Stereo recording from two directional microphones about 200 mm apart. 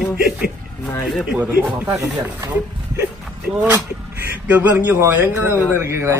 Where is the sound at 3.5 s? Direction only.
5° right (ahead or behind).